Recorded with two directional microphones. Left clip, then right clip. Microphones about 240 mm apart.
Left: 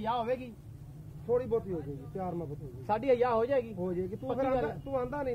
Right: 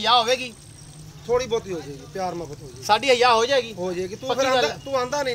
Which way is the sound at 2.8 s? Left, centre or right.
Centre.